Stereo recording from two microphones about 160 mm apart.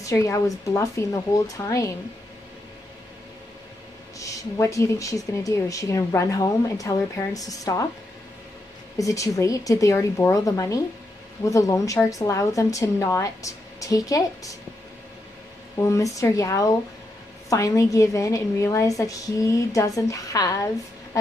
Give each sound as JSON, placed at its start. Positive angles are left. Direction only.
{"t": 0.0, "sound": "speech", "side_deg": 20}
{"t": 4.2, "sound": "speech", "side_deg": 20}
{"t": 8.9, "sound": "speech", "side_deg": 20}
{"t": 15.8, "sound": "speech", "side_deg": 20}